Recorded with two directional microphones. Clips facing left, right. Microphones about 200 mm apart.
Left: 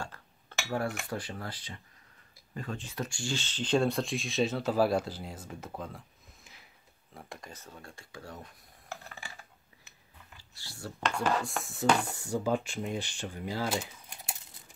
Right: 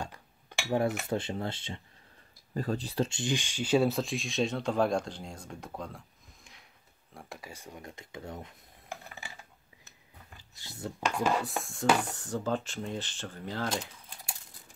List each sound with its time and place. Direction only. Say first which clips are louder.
0.0 s cutlery: right 2 dB; 15° right (ahead or behind)
2.5 s speech: right 7 dB; 35° right (ahead or behind)
3.1 s speech: right 4 dB; 20° right (ahead or behind)
10.5 s speech: right 3 dB; 20° right (ahead or behind)
12.1 s speech: left 2 dB; 10° left (ahead or behind)